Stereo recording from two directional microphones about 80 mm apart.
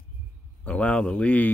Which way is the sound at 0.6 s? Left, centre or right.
Centre.